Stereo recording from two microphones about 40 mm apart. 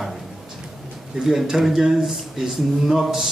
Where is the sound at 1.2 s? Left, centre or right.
Centre.